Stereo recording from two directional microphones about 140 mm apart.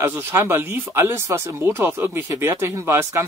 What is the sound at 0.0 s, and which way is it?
Speech, 15° right (ahead or behind).